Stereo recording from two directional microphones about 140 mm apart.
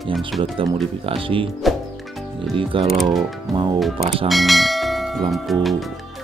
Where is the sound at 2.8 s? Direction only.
Centre (ahead or behind).